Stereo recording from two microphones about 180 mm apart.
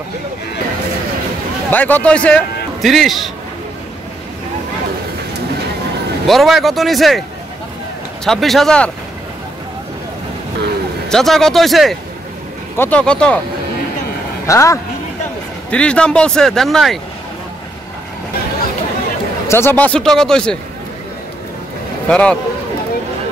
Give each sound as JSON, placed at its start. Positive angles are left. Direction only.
{"t": 1.7, "sound": "a man's voice", "side_deg": 10}
{"t": 6.2, "sound": "speech", "side_deg": 0}
{"t": 8.3, "sound": "speech", "side_deg": 0}
{"t": 11.1, "sound": "a man's voice", "side_deg": 0}
{"t": 14.4, "sound": "speech", "side_deg": 15}
{"t": 15.7, "sound": "speech", "side_deg": 5}
{"t": 19.4, "sound": "a sound", "side_deg": 15}
{"t": 19.8, "sound": "speech", "side_deg": 5}
{"t": 22.0, "sound": "speech", "side_deg": 5}